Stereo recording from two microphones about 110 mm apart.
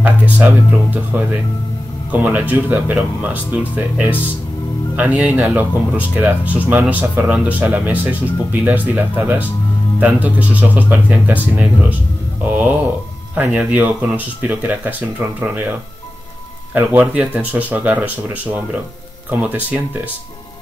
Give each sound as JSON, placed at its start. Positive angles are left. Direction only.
{"t": 0.0, "sound": "speech", "side_deg": -15}
{"t": 13.3, "sound": "speech", "side_deg": -15}
{"t": 16.7, "sound": "speech", "side_deg": -15}